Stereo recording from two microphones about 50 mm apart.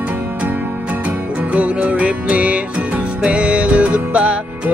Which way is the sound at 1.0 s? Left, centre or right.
Right.